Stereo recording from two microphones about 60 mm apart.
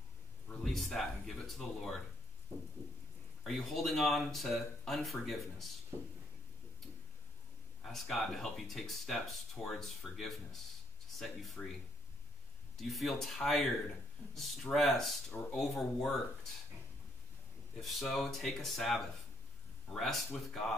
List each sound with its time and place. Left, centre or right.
0.7 s speech: centre
3.4 s speech: centre
7.8 s speech: centre
12.7 s speech: centre
17.7 s speech: centre